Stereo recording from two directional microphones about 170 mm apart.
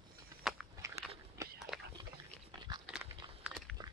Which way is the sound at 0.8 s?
15° right (ahead or behind).